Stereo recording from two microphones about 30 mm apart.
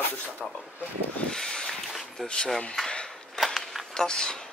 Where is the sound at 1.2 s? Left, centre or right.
Left.